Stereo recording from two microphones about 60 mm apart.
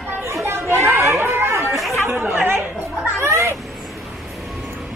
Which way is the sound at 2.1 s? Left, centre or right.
Right.